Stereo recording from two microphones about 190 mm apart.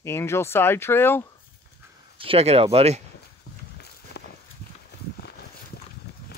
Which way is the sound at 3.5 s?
55° left (ahead or behind).